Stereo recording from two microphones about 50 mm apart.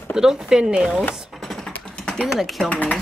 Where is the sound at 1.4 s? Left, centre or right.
Centre.